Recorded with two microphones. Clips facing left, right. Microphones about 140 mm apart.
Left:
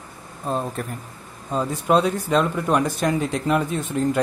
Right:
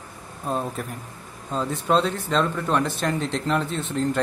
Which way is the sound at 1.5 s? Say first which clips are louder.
Left 2 dB; 10° left (ahead or behind).